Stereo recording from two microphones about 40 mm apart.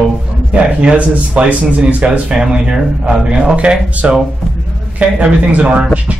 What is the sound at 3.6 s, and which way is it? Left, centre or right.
Speech, right.